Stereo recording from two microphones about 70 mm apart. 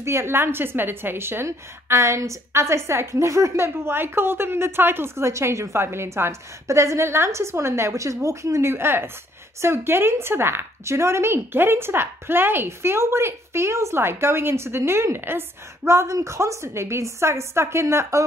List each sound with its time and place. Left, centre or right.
0.0 s a woman's voice: right